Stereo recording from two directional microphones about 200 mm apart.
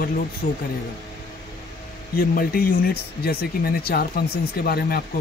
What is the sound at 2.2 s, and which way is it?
Speech, 45° left (ahead or behind).